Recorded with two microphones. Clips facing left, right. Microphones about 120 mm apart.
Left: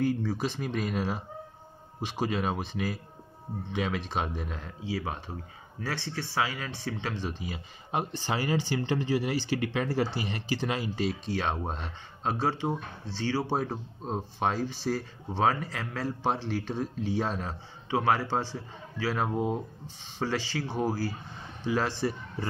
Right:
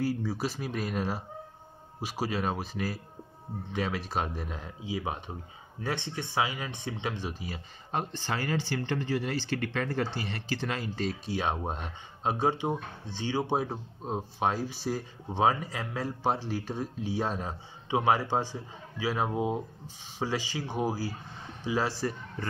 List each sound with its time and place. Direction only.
0.0 s speech: 10° right (ahead or behind)
4.8 s speech: 15° right (ahead or behind)
7.9 s speech: 10° left (ahead or behind)
11.2 s speech: 10° right (ahead or behind)
22.4 s speech: 10° left (ahead or behind)